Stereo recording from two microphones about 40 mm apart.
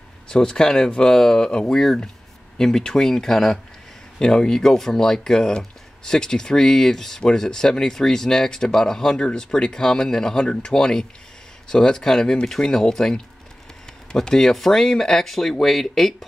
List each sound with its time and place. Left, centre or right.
0.3 s speech: left; by 16.2 s centre